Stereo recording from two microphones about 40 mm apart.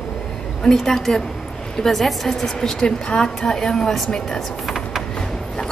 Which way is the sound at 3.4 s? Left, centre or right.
Centre.